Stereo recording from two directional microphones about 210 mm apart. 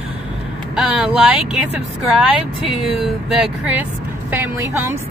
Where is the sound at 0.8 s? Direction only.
5° right (ahead or behind).